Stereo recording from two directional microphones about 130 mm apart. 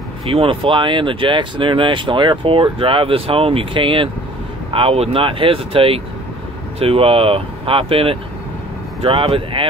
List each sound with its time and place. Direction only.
0.3 s speech: 50° right (ahead or behind)
0.7 s speech: 40° right (ahead or behind)